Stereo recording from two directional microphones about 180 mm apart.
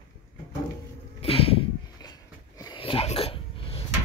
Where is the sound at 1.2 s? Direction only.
30° left (ahead or behind).